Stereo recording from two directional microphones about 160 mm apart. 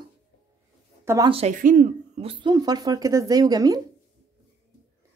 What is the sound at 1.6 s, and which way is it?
Speech, 55° right (ahead or behind).